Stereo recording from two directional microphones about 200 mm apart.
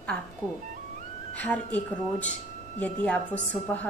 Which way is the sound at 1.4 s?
10° left (ahead or behind).